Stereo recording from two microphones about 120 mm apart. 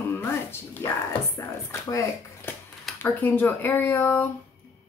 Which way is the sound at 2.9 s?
20° left (ahead or behind).